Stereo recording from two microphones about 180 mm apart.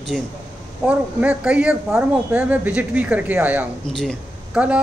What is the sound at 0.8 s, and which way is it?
Speech, 5° right (ahead or behind).